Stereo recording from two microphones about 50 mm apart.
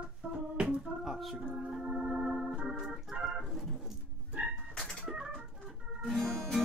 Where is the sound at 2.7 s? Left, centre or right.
Centre.